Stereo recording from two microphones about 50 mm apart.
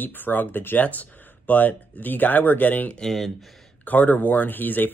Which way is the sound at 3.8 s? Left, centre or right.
Left.